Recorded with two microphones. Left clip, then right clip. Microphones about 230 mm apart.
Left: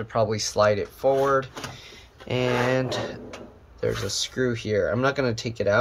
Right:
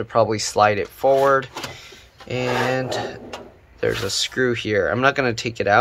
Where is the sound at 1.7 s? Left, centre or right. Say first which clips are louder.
Right 3 dB; centre.